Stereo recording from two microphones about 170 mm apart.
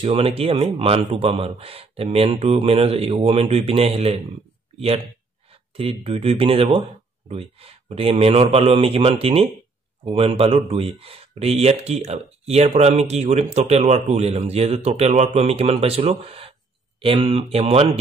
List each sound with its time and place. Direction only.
0.0 s speech: 35° right (ahead or behind)